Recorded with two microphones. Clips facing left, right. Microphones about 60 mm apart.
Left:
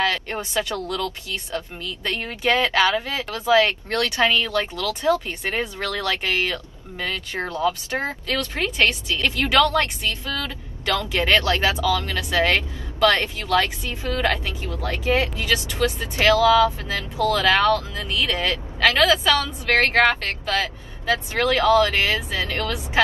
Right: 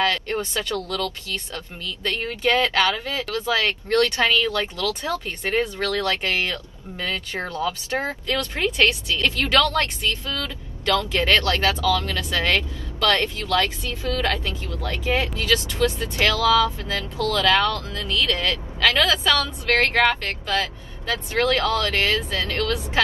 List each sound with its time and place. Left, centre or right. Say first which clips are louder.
0.0 s a woman's voice: right 1 dB; centre
9.2 s a woman's voice: left 1 dB; centre
19.0 s a woman's voice: left 2 dB; centre
20.4 s vehicle: even; centre
21.1 s speech: left 1 dB; left